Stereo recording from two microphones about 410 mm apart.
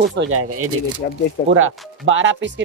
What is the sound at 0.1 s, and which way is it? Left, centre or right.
Speech, right.